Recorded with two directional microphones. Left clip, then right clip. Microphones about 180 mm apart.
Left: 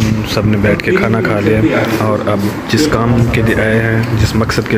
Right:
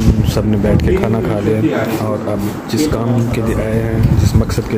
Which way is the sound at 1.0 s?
5° right (ahead or behind).